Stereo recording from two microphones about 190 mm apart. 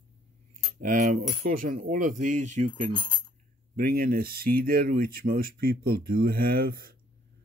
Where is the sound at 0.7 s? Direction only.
45° right (ahead or behind).